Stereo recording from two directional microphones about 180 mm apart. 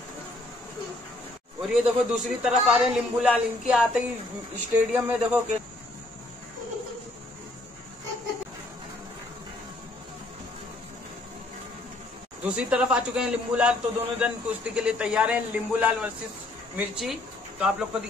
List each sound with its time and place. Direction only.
1.6 s a man's voice: 5° right (ahead or behind)
12.4 s a man's voice: 5° right (ahead or behind)